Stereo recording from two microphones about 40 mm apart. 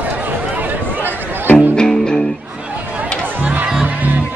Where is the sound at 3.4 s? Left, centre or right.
Right.